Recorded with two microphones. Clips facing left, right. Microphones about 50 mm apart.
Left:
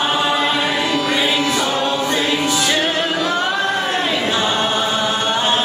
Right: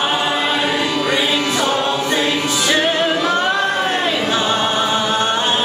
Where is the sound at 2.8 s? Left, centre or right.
Centre.